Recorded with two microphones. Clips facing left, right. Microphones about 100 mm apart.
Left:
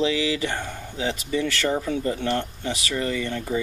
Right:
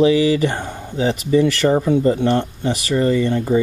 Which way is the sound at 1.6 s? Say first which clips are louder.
Right 7 dB; 30° right (ahead or behind).